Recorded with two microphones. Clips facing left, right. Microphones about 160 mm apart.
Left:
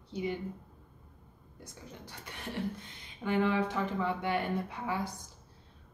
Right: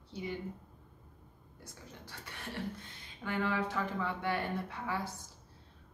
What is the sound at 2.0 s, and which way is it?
A woman's voice, 15° left (ahead or behind).